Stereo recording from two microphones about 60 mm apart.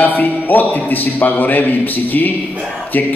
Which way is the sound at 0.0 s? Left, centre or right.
Left.